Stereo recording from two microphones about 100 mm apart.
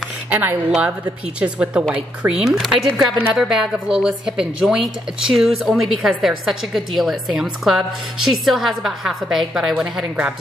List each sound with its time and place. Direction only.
0.3 s a woman's voice: 15° right (ahead or behind)